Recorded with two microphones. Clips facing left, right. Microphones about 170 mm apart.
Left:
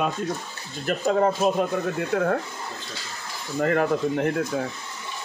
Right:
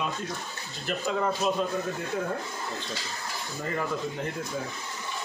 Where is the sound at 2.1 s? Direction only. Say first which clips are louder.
Left 8 dB; 70° left (ahead or behind).